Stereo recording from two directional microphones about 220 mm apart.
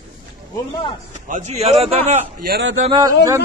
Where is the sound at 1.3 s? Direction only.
30° right (ahead or behind).